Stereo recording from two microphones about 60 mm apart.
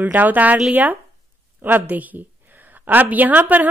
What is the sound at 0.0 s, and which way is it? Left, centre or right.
Speech, right.